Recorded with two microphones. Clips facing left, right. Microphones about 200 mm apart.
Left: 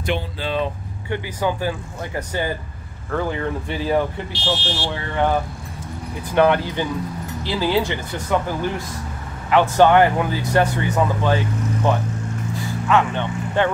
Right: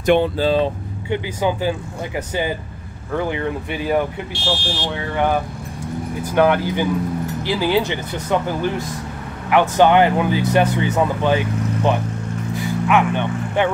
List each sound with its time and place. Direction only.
0.0 s speech: 50° right (ahead or behind)
1.1 s speech: 20° right (ahead or behind)
4.5 s speech: 10° right (ahead or behind)
9.5 s speech: 15° right (ahead or behind)
12.5 s vehicle: 15° right (ahead or behind)